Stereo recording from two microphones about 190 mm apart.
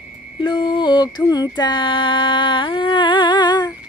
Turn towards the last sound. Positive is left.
turn(degrees=20)  # may be behind; listen again after turning